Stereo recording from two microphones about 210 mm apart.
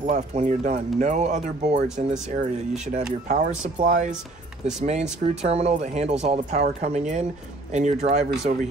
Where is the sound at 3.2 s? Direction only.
35° right (ahead or behind).